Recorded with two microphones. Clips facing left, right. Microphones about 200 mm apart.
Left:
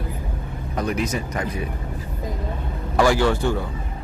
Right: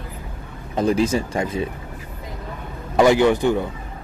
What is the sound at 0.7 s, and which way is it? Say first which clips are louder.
Speech: right 6 dB; 30° right (ahead or behind).